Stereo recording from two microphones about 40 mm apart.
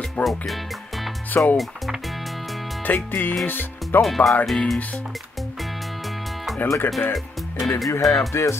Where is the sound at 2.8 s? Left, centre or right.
Left.